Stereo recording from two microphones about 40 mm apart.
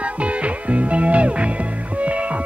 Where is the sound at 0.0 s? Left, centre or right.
Right.